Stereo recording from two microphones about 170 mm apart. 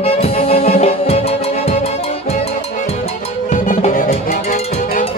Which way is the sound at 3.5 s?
50° left (ahead or behind).